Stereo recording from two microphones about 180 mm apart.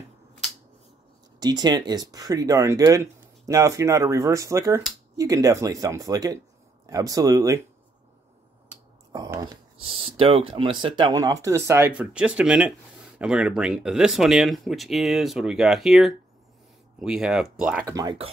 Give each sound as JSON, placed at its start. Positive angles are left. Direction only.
{"t": 1.4, "sound": "speech", "side_deg": -25}
{"t": 9.1, "sound": "speech", "side_deg": -20}
{"t": 17.8, "sound": "speech", "side_deg": -20}